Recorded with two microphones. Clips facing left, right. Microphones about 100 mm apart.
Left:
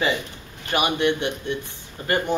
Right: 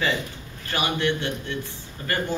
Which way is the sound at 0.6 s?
20° left (ahead or behind).